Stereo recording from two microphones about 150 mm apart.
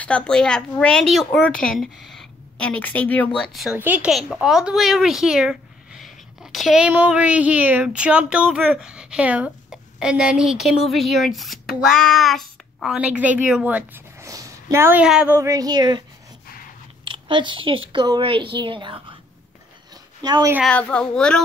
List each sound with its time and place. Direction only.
0.0 s a woman's voice: 10° left (ahead or behind)
3.7 s a child's voice: 10° right (ahead or behind)
15.0 s a woman's voice: 5° right (ahead or behind)
15.3 s a sound: 20° right (ahead or behind)
17.0 s speech: 30° right (ahead or behind)
20.2 s speech: 30° right (ahead or behind)
20.6 s a woman's voice: 10° left (ahead or behind)